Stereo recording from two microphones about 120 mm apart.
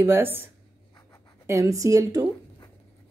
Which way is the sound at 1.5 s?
25° right (ahead or behind).